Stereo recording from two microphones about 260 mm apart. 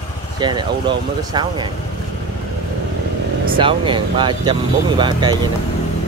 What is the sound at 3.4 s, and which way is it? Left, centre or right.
Speech, centre.